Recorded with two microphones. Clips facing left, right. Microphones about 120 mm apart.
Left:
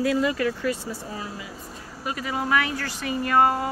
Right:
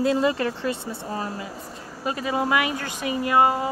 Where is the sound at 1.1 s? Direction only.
45° right (ahead or behind).